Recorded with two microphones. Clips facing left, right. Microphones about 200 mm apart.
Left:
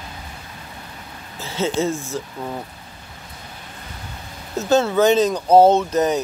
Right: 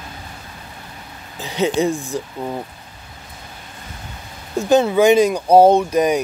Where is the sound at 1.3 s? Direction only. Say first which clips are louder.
Right 3 dB; 15° right (ahead or behind).